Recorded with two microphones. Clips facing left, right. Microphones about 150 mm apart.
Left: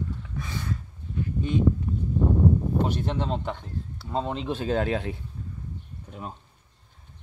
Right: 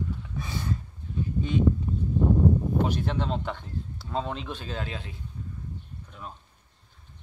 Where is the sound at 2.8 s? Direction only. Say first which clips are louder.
Left 1 dB; 20° left (ahead or behind).